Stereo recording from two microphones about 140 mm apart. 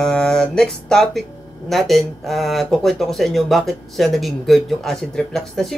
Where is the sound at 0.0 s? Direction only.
5° left (ahead or behind).